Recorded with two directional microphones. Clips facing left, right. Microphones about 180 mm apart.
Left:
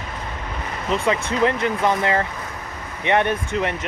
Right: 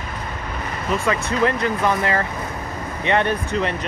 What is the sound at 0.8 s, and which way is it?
Speech, 20° left (ahead or behind).